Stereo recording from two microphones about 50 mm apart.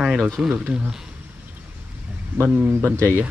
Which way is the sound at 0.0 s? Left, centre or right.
Centre.